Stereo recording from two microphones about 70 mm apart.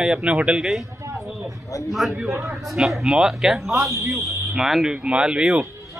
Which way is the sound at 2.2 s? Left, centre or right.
Right.